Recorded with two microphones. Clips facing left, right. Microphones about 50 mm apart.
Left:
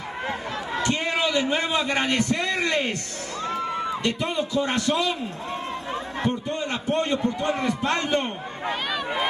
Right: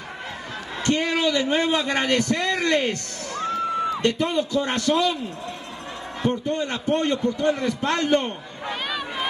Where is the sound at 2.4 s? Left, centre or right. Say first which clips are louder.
Right 2 dB; left.